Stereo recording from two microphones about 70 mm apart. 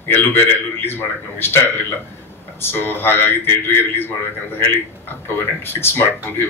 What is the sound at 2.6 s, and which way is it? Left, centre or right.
Speech, left.